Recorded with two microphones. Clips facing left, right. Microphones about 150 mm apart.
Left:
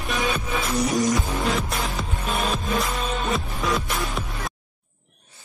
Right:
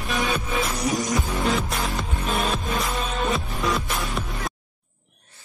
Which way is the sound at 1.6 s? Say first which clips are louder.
Even; centre (ahead or behind).